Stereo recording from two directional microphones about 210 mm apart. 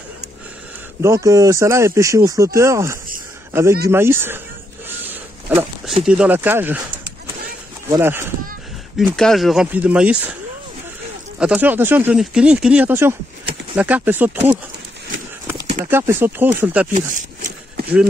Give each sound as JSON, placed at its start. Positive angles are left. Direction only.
{"t": 1.0, "sound": "speech", "side_deg": -15}
{"t": 4.8, "sound": "a sound", "side_deg": -10}
{"t": 6.0, "sound": "speech", "side_deg": -5}
{"t": 7.9, "sound": "speech", "side_deg": -10}
{"t": 8.9, "sound": "speech", "side_deg": 0}
{"t": 11.3, "sound": "speech", "side_deg": -5}
{"t": 15.8, "sound": "speech", "side_deg": -10}
{"t": 16.9, "sound": "a sound", "side_deg": -35}